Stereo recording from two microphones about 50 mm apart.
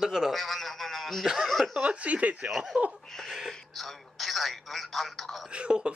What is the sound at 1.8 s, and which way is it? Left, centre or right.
Speech, right.